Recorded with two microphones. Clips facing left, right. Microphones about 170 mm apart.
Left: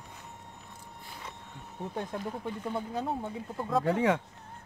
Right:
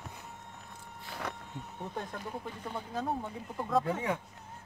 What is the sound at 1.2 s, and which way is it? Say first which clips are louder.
Speech: right 7 dB; 75° right (ahead or behind).